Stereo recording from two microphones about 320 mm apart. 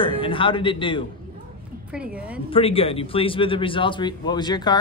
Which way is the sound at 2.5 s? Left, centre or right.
Centre.